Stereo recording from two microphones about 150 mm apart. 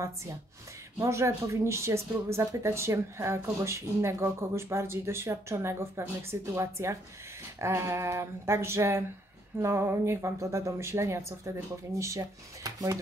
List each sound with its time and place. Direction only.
0.0 s speech: 20° right (ahead or behind)